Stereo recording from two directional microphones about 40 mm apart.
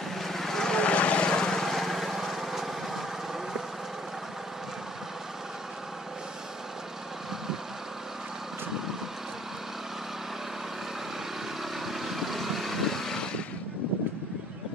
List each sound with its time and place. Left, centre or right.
0.2 s vehicle: centre
0.7 s vehicle: left
1.5 s vehicle: centre
11.8 s vehicle: centre